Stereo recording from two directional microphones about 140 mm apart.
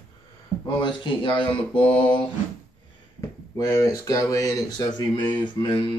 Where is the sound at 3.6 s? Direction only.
25° left (ahead or behind).